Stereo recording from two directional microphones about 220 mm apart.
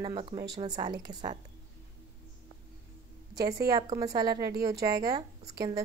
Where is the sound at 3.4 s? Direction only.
15° right (ahead or behind).